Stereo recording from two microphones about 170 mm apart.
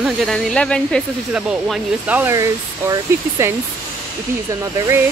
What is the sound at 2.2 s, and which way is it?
Speech, 15° right (ahead or behind).